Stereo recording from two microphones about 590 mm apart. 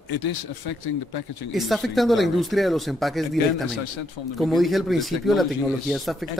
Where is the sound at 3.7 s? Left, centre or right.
Left.